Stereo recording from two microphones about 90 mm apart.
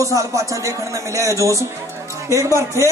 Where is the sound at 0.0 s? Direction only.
35° right (ahead or behind).